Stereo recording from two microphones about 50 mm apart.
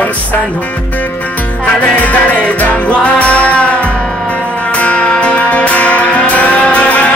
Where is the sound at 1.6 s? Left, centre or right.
Left.